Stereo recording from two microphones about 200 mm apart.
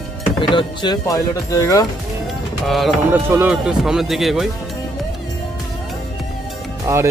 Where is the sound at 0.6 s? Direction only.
20° left (ahead or behind).